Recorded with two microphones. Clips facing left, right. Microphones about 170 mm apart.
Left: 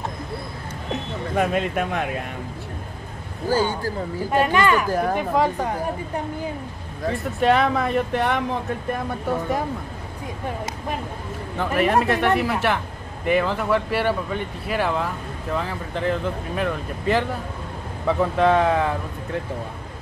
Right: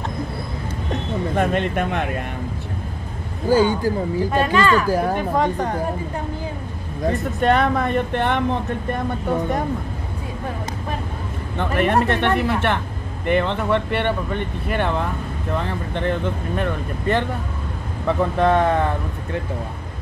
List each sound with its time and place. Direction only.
1.3 s speech: 5° left (ahead or behind)
3.4 s speech: 15° right (ahead or behind)
4.3 s speech: 15° left (ahead or behind)
4.8 s speech: 5° right (ahead or behind)
5.1 s speech: 5° left (ahead or behind)
7.3 s speech: 5° left (ahead or behind)
11.5 s speech: 5° left (ahead or behind)